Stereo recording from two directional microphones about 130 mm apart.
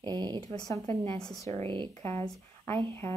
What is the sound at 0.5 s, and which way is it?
Speech, 25° left (ahead or behind).